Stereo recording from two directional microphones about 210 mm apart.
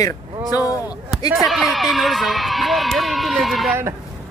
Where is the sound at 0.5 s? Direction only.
15° left (ahead or behind).